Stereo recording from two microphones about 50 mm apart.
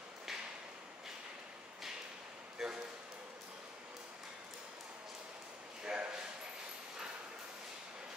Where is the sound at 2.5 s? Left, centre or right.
Centre.